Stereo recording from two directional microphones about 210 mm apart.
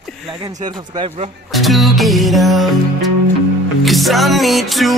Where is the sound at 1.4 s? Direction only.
Centre (ahead or behind).